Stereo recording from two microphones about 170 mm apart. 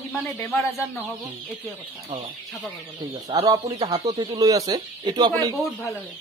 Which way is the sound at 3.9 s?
40° right (ahead or behind).